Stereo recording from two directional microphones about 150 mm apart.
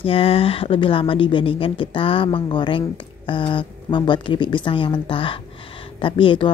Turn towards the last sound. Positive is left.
turn(degrees=35)  # may be behind; listen again after turning